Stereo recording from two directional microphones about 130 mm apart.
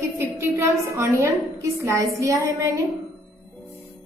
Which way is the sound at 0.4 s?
20° right (ahead or behind).